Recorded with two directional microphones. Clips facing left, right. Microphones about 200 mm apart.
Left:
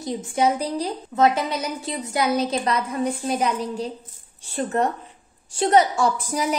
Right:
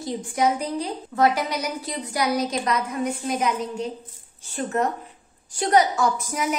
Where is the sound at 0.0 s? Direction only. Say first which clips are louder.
Left 1 dB; 25° left (ahead or behind).